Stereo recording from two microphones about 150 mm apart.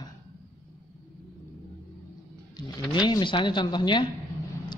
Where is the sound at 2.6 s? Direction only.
30° left (ahead or behind).